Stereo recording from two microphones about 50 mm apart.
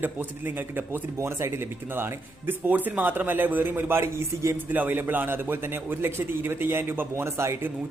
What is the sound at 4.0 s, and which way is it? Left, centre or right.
Speech, right.